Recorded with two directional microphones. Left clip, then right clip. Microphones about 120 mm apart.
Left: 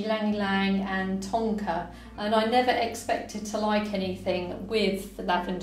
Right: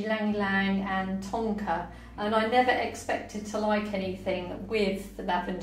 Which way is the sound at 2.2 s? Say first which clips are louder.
Left 1 dB; 25° left (ahead or behind).